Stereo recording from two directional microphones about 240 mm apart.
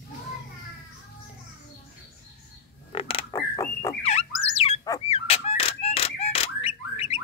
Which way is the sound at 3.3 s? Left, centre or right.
Centre.